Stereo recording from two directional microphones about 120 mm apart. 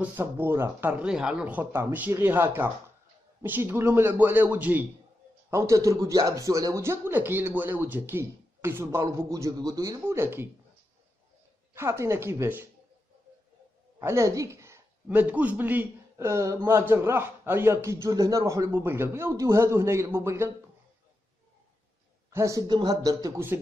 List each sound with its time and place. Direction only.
0.0 s speech: 20° right (ahead or behind)
5.5 s speech: 25° right (ahead or behind)
11.7 s speech: 20° right (ahead or behind)
13.9 s speech: 25° right (ahead or behind)
22.3 s speech: 25° right (ahead or behind)